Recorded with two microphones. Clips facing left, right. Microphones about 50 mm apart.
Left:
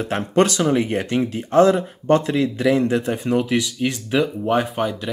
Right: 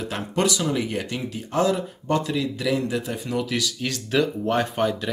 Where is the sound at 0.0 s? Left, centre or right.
Left.